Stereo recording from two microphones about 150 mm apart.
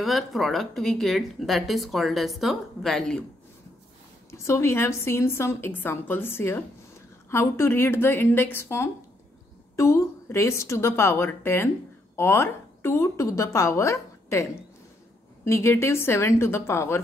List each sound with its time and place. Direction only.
0.0 s speech: centre (ahead or behind)
4.3 s a woman's voice: 20° left (ahead or behind)